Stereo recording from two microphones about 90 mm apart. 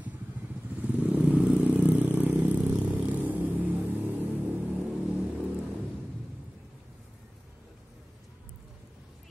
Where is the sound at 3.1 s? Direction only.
20° right (ahead or behind).